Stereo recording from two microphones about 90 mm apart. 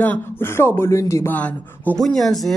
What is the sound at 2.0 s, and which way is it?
Speech, 5° left (ahead or behind).